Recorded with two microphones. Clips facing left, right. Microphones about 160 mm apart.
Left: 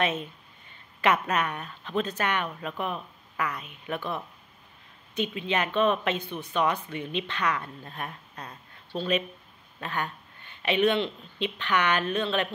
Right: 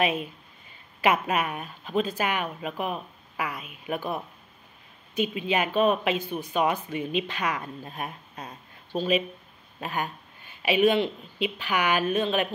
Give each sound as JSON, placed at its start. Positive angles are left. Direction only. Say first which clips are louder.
{"t": 0.0, "sound": "speech", "louder": "right 2 dB", "side_deg": -15}
{"t": 5.1, "sound": "a woman's voice", "louder": "right 2 dB", "side_deg": -10}